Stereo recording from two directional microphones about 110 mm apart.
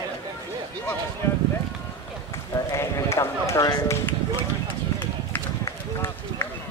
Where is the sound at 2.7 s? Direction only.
25° left (ahead or behind).